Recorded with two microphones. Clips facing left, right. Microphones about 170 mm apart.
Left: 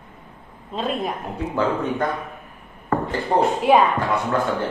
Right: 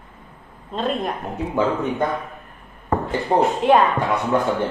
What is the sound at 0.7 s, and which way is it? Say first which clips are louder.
Speech: right 1 dB; centre (ahead or behind).